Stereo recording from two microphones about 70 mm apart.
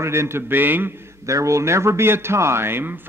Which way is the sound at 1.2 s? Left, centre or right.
Right.